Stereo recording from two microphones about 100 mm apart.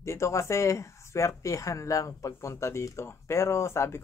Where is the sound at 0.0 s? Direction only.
25° left (ahead or behind).